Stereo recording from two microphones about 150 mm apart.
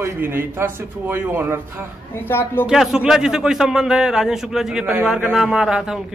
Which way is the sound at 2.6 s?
5° right (ahead or behind).